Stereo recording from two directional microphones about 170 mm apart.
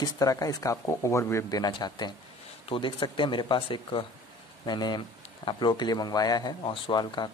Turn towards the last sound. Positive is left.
turn(degrees=25)  # may be behind; listen again after turning